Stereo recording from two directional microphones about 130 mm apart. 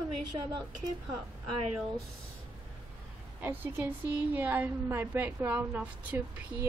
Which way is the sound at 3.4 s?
15° right (ahead or behind).